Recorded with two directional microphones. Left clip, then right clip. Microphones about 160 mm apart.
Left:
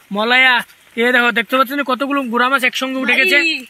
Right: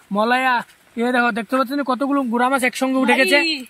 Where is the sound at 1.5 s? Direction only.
30° left (ahead or behind).